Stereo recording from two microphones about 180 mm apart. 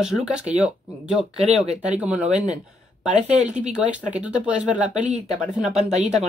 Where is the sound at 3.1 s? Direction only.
40° right (ahead or behind).